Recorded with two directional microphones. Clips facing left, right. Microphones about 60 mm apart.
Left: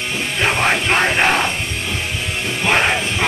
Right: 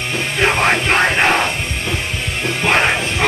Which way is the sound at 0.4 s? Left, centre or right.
Centre.